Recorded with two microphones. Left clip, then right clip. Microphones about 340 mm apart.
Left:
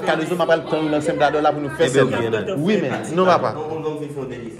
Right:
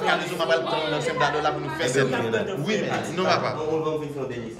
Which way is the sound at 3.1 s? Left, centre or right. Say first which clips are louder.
Left 8 dB; centre.